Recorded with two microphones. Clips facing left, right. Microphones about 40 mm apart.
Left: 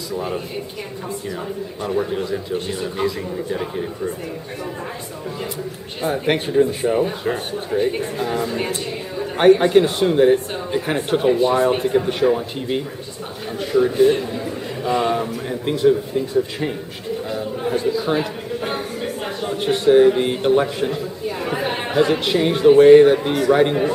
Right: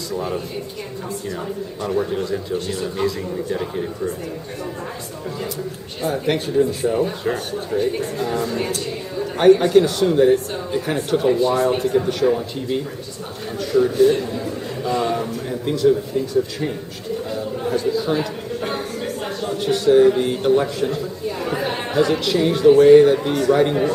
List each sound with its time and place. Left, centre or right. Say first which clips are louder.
0.1 s a man's voice: even; centre
1.9 s a man's voice: even; centre
6.2 s a man's voice: left 2 dB; left
17.3 s chatter: even; centre
18.6 s speech: even; centre